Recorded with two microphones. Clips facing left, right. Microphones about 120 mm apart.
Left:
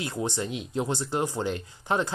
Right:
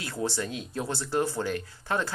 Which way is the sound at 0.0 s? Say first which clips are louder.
Left 1 dB; 20° left (ahead or behind).